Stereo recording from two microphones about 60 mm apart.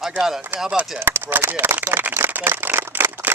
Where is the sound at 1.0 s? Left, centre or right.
Right.